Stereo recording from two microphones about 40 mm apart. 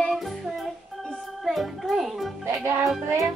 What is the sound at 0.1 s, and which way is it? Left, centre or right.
Music, centre.